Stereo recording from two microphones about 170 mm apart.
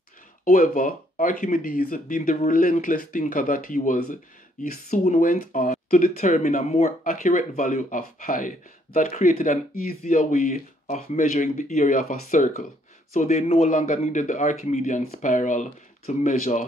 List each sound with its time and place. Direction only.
0.5 s speech: 55° left (ahead or behind)